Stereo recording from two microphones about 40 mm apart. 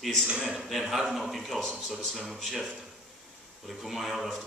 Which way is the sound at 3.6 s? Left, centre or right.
Centre.